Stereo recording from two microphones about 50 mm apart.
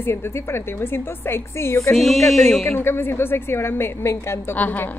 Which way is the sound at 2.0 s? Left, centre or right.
Centre.